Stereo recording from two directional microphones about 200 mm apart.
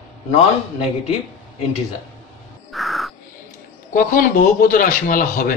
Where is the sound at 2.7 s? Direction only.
Centre (ahead or behind).